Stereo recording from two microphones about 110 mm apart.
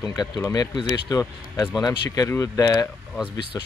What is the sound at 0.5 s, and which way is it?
Speech, 35° left (ahead or behind).